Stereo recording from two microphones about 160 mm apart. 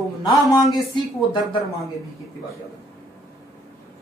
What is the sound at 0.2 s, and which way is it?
Speech, 25° left (ahead or behind).